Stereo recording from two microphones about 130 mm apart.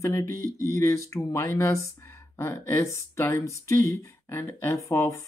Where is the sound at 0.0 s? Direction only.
20° left (ahead or behind).